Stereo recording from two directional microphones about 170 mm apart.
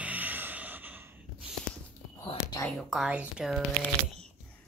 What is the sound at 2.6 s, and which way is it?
Whispering, centre (ahead or behind).